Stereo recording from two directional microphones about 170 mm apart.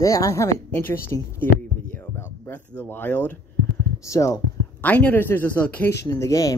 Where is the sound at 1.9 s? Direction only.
10° left (ahead or behind).